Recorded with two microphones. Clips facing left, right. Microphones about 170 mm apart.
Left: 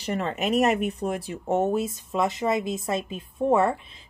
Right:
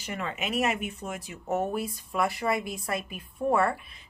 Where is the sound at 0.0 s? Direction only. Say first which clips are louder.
Left 7 dB; 35° left (ahead or behind).